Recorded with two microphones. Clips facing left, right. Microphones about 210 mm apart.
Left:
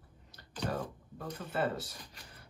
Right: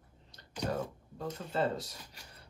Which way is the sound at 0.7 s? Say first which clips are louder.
Right 2 dB; 25° right (ahead or behind).